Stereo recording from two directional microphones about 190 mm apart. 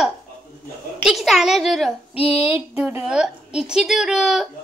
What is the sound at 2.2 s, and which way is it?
Child singing, 30° left (ahead or behind).